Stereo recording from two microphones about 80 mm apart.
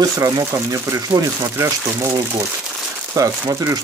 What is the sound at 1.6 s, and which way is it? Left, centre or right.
Speech, right.